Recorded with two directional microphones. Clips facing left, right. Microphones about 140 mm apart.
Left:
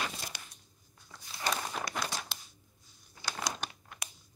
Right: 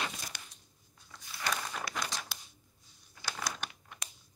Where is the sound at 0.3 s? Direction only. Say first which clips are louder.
Left 1 dB; 15° left (ahead or behind).